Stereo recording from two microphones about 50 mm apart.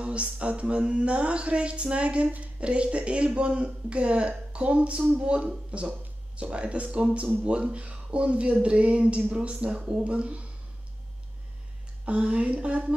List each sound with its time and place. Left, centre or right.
0.0 s speech: right
12.0 s speech: right